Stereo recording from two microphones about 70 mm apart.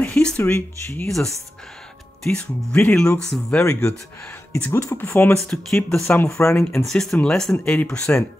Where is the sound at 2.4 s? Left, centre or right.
Left.